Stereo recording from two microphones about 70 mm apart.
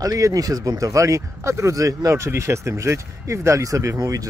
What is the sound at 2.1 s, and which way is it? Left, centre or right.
Speech, right.